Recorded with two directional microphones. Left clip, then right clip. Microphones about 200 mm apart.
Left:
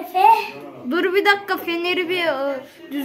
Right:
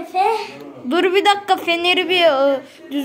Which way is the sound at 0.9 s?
15° right (ahead or behind).